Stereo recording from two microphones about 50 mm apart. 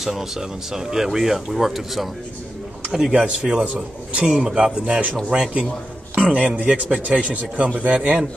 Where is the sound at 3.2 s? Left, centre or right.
Centre.